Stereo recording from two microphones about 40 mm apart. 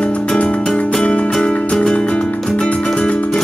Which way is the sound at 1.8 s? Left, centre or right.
Left.